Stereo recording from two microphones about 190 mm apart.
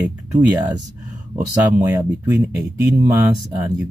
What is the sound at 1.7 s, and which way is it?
Speech, 10° right (ahead or behind).